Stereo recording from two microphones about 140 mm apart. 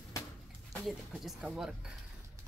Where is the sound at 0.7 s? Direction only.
Centre (ahead or behind).